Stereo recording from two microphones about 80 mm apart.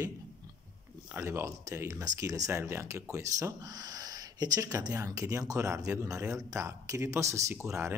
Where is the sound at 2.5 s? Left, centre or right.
Right.